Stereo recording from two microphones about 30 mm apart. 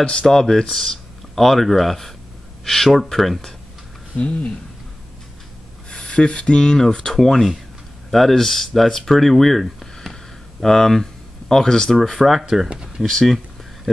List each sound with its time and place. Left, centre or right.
0.2 s speech: centre
1.4 s speech: centre
4.2 s speech: left
5.9 s speech: left
7.2 s speech: centre
9.3 s a sound: centre
10.6 s speech: centre
12.2 s speech: centre